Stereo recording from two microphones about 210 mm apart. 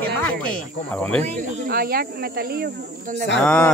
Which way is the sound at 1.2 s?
35° right (ahead or behind).